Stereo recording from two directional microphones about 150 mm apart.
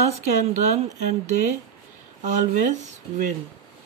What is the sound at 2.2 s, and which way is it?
Speech, 60° right (ahead or behind).